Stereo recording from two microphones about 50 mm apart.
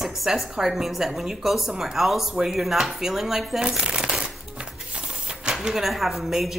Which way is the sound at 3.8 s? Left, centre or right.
Centre.